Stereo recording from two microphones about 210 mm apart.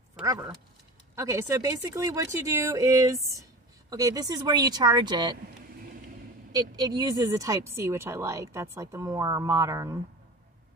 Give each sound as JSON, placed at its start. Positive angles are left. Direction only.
{"t": 0.1, "sound": "speech", "side_deg": -15}
{"t": 6.5, "sound": "speech", "side_deg": -20}